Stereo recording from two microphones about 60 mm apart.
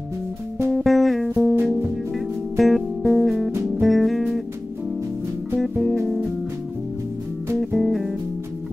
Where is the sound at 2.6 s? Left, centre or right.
Centre.